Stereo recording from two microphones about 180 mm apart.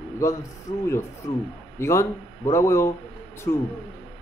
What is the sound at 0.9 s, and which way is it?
A man's voice, 15° left (ahead or behind).